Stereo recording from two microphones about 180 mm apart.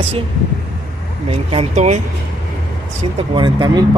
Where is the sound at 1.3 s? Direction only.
35° right (ahead or behind).